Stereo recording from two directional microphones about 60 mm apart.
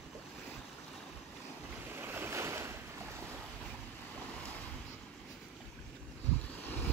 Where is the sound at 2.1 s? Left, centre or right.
Right.